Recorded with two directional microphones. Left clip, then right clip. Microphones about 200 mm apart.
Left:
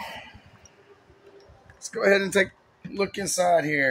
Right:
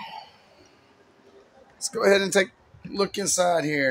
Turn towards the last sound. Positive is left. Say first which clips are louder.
# left 1 dB
turn(degrees=-15)  # may be behind; listen again after turning